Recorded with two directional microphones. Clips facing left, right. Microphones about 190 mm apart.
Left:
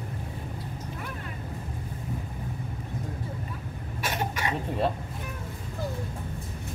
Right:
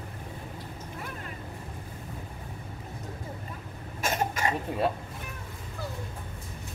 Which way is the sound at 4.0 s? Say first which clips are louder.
Right 2 dB; 45° right (ahead or behind).